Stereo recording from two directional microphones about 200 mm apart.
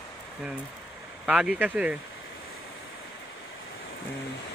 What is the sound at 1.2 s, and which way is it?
Speech, 5° right (ahead or behind).